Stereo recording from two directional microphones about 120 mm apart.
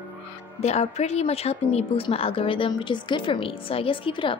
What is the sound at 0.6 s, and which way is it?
Speech, 65° left (ahead or behind).